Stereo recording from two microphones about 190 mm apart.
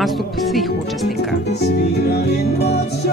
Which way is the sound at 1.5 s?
60° left (ahead or behind).